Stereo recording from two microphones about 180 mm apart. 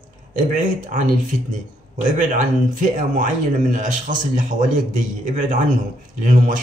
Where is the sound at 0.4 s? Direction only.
45° right (ahead or behind).